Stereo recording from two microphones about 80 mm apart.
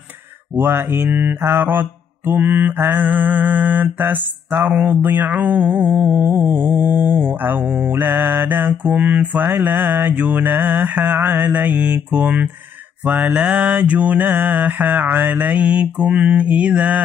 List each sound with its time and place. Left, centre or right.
0.6 s mantra: right